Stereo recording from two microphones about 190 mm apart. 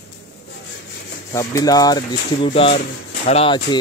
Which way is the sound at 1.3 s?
20° left (ahead or behind).